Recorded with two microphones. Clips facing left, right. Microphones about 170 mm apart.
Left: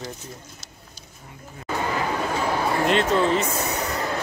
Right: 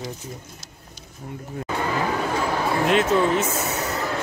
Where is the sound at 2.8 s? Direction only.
Centre (ahead or behind).